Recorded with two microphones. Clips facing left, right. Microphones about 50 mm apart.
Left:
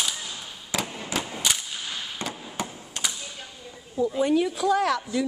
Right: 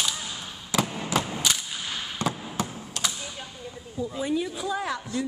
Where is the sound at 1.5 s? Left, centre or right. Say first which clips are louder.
Even; centre.